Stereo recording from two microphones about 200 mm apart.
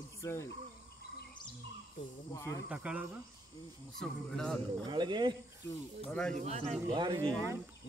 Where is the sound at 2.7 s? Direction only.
5° right (ahead or behind).